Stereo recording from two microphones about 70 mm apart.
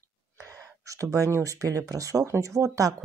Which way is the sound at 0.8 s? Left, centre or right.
Right.